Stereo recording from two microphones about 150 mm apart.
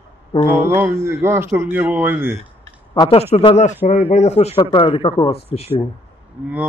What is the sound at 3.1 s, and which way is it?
Speech, 40° left (ahead or behind).